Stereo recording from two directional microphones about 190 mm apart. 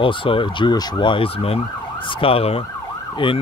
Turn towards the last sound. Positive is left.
turn(degrees=25)  # may be behind; listen again after turning